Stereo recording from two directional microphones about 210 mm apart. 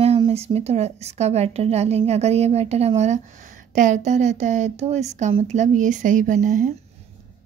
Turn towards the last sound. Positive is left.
turn(degrees=-35)  # may be behind; listen again after turning